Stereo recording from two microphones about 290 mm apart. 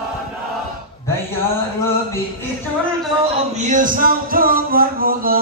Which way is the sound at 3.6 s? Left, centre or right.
Right.